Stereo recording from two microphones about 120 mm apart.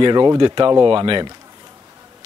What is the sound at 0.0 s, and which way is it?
Speech, 35° right (ahead or behind).